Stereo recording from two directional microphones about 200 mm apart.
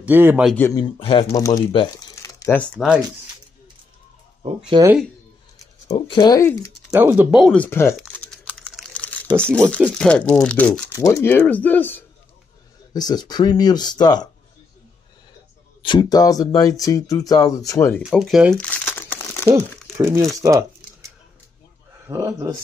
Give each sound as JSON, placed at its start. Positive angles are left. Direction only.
{"t": 0.0, "sound": "speech", "side_deg": -10}
{"t": 0.6, "sound": "speech", "side_deg": 15}
{"t": 2.4, "sound": "speech", "side_deg": 5}
{"t": 4.7, "sound": "speech", "side_deg": -20}
{"t": 5.9, "sound": "speech", "side_deg": 25}
{"t": 6.9, "sound": "speech", "side_deg": -10}
{"t": 7.9, "sound": "crumpling", "side_deg": 0}
{"t": 9.4, "sound": "speech", "side_deg": 5}
{"t": 12.9, "sound": "speech", "side_deg": 20}
{"t": 15.8, "sound": "speech", "side_deg": 20}
{"t": 18.0, "sound": "crumpling", "side_deg": 0}
{"t": 20.0, "sound": "speech", "side_deg": -10}
{"t": 22.0, "sound": "speech", "side_deg": -15}